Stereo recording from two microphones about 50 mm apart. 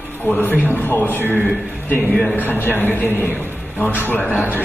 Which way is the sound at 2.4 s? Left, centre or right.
Left.